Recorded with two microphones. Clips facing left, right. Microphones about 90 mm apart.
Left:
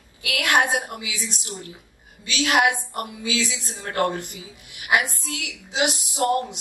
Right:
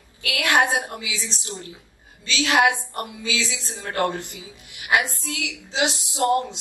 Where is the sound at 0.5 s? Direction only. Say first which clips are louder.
Right 1 dB; 20° right (ahead or behind).